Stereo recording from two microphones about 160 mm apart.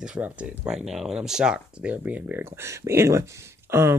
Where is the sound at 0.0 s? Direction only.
5° right (ahead or behind).